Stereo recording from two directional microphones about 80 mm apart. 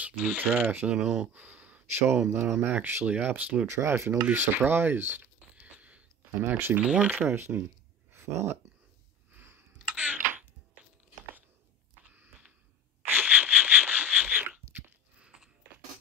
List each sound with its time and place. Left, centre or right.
0.0 s speech: right
0.9 s speech: centre
1.3 s speech: centre
3.8 s speech: right
6.8 s speech: centre
7.2 s speech: right
9.3 s a sound: right
9.9 s typing: centre
12.0 s a sound: centre
15.1 s a sound: centre